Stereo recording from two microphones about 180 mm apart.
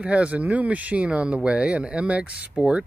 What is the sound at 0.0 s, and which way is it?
Speech, 5° right (ahead or behind).